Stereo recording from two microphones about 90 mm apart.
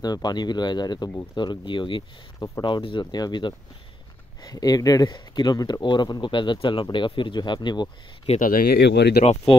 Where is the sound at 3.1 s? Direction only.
55° left (ahead or behind).